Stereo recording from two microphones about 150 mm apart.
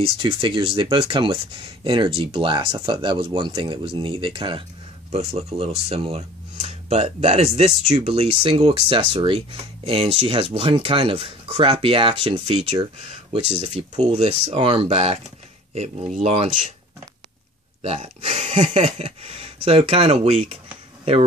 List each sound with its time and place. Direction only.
0.2 s speech: 35° right (ahead or behind); by 16.7 s 50° right (ahead or behind)
17.8 s speech: 45° right (ahead or behind)